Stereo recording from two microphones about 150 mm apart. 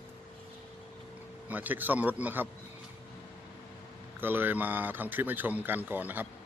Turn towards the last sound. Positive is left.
turn(degrees=-10)  # may be behind; listen again after turning